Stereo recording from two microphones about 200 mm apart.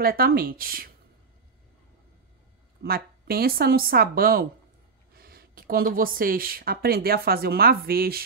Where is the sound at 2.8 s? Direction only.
50° right (ahead or behind).